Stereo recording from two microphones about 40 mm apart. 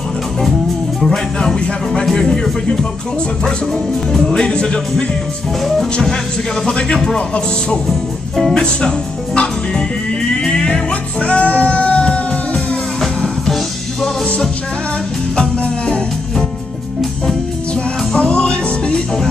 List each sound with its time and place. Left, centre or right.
1.0 s music: centre
4.1 s music: centre
6.0 s music: centre
6.7 s speech: left
7.9 s speech: centre
8.5 s speech: left
10.3 s music: centre
10.9 s music: left
15.6 s music: left
18.1 s music: left